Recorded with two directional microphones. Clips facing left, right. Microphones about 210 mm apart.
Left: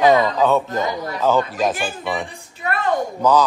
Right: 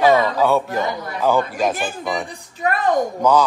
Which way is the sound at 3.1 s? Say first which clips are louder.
Left 2 dB; 10° right (ahead or behind).